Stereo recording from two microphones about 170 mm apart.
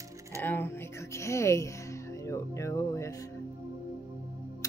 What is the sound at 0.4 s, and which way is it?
A woman's voice, 10° left (ahead or behind).